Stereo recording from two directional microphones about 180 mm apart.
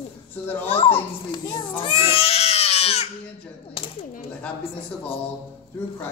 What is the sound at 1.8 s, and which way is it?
Crying, 30° left (ahead or behind).